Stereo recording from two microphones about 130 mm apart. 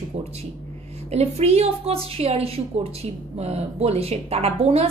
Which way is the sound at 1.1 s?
55° right (ahead or behind).